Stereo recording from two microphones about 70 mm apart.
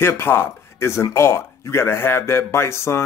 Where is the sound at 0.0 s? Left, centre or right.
Left.